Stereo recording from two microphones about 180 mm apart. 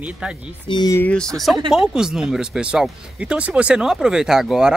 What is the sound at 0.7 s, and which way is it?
Speech, 25° left (ahead or behind).